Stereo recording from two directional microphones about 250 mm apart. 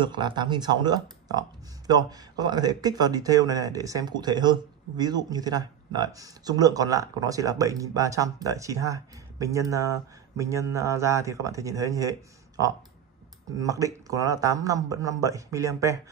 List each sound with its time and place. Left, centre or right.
0.0 s speech: centre